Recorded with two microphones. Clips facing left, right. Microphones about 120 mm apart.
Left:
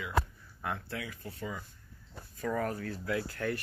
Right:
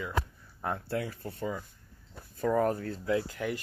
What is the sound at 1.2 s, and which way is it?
Speech, 40° right (ahead or behind).